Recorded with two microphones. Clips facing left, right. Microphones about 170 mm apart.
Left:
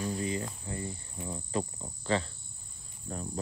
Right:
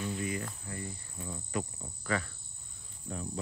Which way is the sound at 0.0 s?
35° left (ahead or behind).